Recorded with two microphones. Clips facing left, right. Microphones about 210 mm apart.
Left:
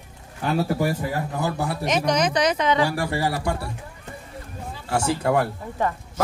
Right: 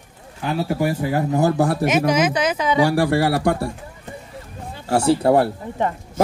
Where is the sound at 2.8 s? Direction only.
75° right (ahead or behind).